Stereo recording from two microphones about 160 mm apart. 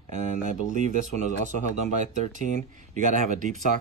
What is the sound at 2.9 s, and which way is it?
Speech, 50° right (ahead or behind).